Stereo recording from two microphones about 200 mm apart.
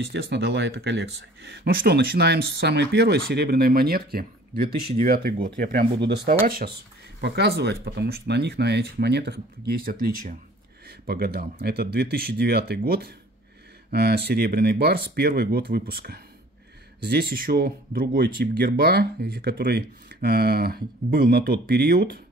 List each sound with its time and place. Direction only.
0.0 s speech: 55° right (ahead or behind)